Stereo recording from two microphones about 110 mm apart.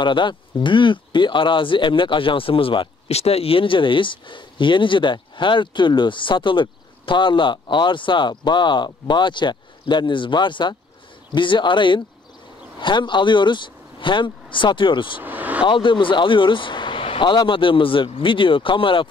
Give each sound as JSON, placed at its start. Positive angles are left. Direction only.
{"t": 0.0, "sound": "speech", "side_deg": 45}
{"t": 15.2, "sound": "vehicle", "side_deg": -15}
{"t": 15.6, "sound": "speech", "side_deg": 50}